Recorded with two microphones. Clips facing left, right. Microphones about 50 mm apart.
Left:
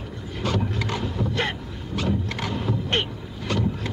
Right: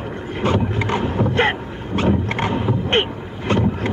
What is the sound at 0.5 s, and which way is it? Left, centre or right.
Boat, right.